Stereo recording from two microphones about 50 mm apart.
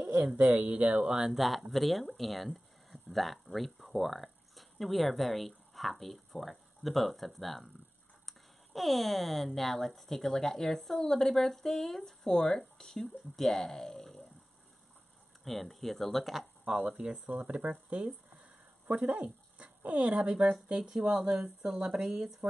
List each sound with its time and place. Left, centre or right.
0.1 s speech: right
1.0 s speech: centre
1.7 s speech: centre
15.4 s speech: centre
16.6 s speech: centre
17.3 s speech: right
20.7 s speech: centre